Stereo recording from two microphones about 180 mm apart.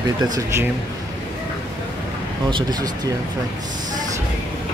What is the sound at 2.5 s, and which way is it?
Speech, 20° right (ahead or behind).